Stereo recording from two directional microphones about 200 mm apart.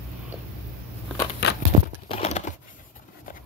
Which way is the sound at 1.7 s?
30° right (ahead or behind).